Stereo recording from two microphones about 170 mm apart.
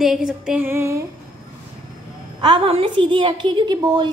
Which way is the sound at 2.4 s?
30° right (ahead or behind).